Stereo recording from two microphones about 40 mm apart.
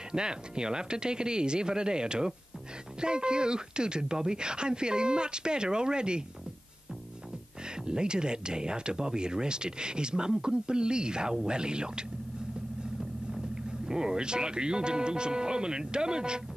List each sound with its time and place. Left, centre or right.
0.1 s speech: centre
7.8 s speech: right
13.3 s speech: centre